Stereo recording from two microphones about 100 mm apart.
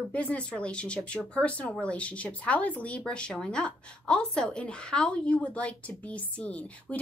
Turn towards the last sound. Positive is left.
turn(degrees=15)  # may be behind; listen again after turning